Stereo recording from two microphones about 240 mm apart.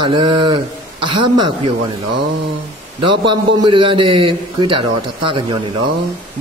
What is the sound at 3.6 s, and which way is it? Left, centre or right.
A man's voice, right.